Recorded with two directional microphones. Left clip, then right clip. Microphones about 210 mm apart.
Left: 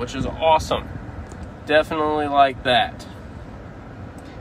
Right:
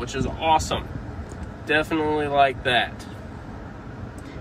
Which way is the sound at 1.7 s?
35° left (ahead or behind).